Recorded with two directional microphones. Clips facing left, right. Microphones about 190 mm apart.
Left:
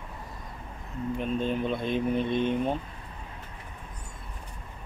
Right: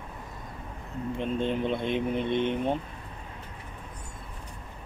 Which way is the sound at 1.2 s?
25° right (ahead or behind).